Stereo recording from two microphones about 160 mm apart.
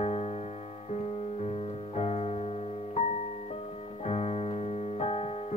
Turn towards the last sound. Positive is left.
turn(degrees=40)  # may be behind; listen again after turning